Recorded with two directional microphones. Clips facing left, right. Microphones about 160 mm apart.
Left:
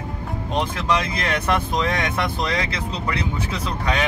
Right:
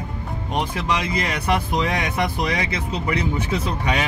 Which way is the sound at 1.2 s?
10° right (ahead or behind).